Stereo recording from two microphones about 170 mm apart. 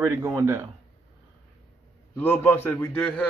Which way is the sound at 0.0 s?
20° right (ahead or behind).